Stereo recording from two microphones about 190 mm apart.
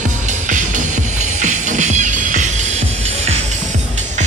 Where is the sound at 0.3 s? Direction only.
40° right (ahead or behind).